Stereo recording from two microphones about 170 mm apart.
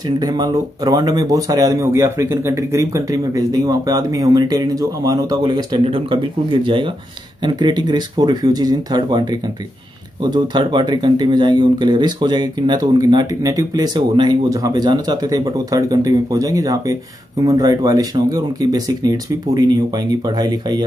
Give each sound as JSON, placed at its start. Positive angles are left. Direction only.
{"t": 0.2, "sound": "speech", "side_deg": -25}